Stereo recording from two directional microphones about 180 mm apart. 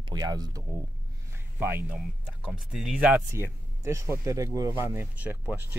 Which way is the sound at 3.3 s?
15° right (ahead or behind).